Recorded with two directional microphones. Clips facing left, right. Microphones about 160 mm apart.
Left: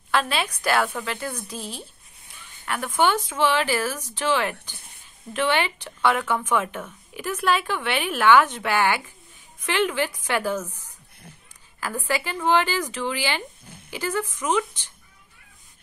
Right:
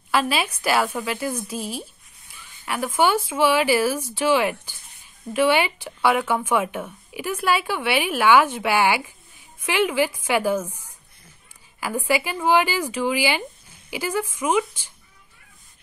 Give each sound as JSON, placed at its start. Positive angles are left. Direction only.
{"t": 0.1, "sound": "a woman's voice", "side_deg": -5}
{"t": 11.8, "sound": "a woman's voice", "side_deg": -10}